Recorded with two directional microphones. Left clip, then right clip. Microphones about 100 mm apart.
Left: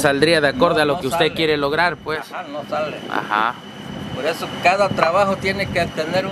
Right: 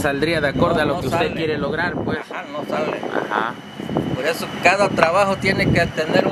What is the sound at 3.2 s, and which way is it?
Speech, 55° left (ahead or behind).